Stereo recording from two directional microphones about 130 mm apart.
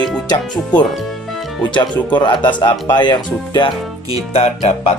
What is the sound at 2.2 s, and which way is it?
Speech, 35° left (ahead or behind).